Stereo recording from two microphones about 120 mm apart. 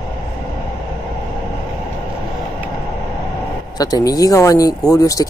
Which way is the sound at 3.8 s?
30° left (ahead or behind).